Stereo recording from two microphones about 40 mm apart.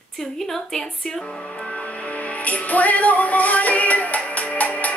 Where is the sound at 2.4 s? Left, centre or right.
Left.